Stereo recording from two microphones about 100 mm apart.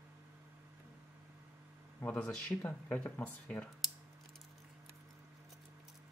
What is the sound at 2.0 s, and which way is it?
A man's voice, 15° left (ahead or behind).